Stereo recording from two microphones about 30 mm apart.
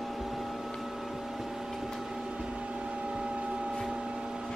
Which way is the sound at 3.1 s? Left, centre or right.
Right.